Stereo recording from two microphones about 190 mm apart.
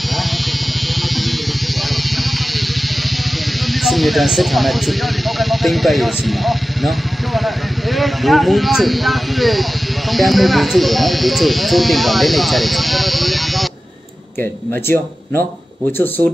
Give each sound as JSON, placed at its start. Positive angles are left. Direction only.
{"t": 3.6, "sound": "speech", "side_deg": 0}
{"t": 14.7, "sound": "speech", "side_deg": 10}